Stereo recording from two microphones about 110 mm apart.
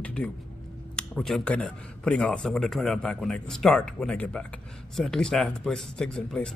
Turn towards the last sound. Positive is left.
turn(degrees=5)  # may be behind; listen again after turning